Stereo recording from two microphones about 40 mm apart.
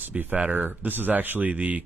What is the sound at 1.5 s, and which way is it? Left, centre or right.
Speech, right.